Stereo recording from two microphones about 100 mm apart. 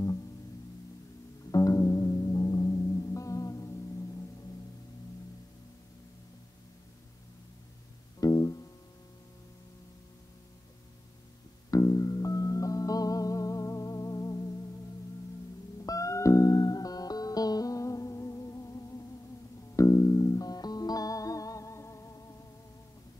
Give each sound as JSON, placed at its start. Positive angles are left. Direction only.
{"t": 1.5, "sound": "music", "side_deg": 35}
{"t": 8.2, "sound": "music", "side_deg": 35}
{"t": 11.7, "sound": "music", "side_deg": 35}
{"t": 15.8, "sound": "music", "side_deg": 35}